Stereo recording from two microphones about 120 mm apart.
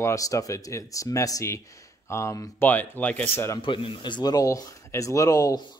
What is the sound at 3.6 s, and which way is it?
Speech, 45° left (ahead or behind).